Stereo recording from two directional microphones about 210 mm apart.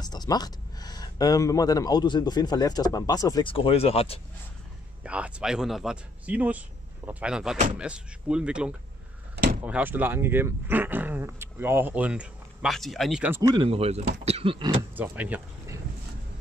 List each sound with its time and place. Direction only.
0.0 s speech: 20° left (ahead or behind)
5.0 s a man's voice: 5° right (ahead or behind)
13.7 s speech: 30° right (ahead or behind)
15.0 s speech: 10° right (ahead or behind)